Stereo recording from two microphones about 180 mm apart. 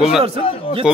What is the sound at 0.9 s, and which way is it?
Speech, 5° right (ahead or behind).